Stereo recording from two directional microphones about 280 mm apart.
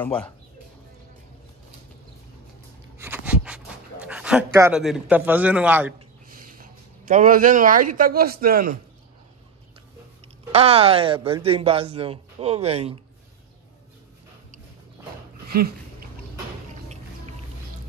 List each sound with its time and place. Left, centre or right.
0.0 s speech: centre
3.0 s dog: centre
6.3 s a sound: right
7.9 s speech: right
10.2 s speech: right
15.5 s a sound: right